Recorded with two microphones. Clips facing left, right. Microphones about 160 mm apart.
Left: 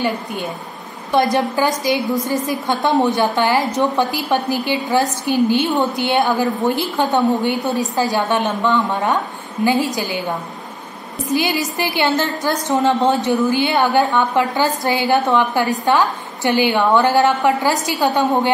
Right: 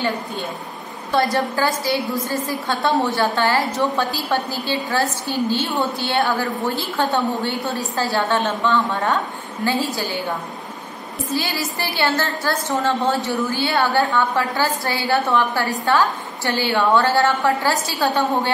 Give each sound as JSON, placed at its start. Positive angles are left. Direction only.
{"t": 0.0, "sound": "a woman's voice", "side_deg": 15}
{"t": 11.3, "sound": "a woman's voice", "side_deg": 15}